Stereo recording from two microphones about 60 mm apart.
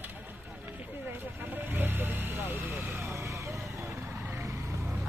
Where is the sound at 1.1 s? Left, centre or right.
Right.